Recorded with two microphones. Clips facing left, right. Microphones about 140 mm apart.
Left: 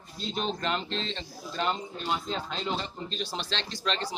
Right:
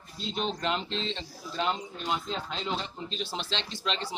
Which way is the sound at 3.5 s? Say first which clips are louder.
Even; 20° right (ahead or behind).